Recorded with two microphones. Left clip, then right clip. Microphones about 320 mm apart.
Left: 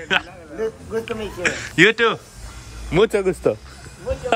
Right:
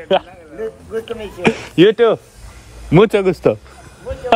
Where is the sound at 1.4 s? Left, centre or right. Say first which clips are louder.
Right 3 dB; centre.